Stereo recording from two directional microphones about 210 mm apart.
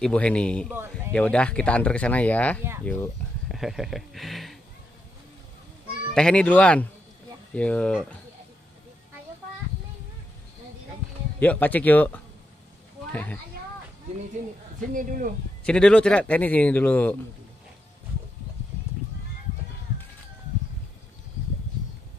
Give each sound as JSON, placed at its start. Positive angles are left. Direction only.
{"t": 0.0, "sound": "a man's voice", "side_deg": 5}
{"t": 6.1, "sound": "speech", "side_deg": 5}
{"t": 11.3, "sound": "a man's voice", "side_deg": 10}
{"t": 14.9, "sound": "speech", "side_deg": -40}
{"t": 15.6, "sound": "a man's voice", "side_deg": 5}